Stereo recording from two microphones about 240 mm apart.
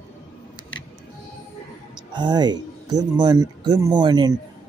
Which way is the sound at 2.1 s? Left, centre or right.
Centre.